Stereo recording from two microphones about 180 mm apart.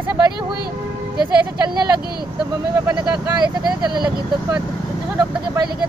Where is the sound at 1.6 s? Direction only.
25° right (ahead or behind).